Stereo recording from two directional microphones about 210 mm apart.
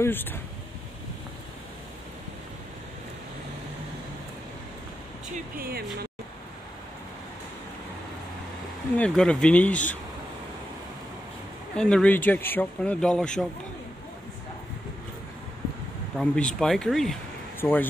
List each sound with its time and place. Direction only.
0.0 s speech: 10° left (ahead or behind)
5.6 s speech: 45° right (ahead or behind)
8.9 s speech: 5° left (ahead or behind)
11.7 s speech: 5° left (ahead or behind)
16.2 s speech: 5° left (ahead or behind)